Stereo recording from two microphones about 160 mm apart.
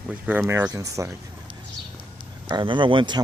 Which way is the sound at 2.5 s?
30° right (ahead or behind).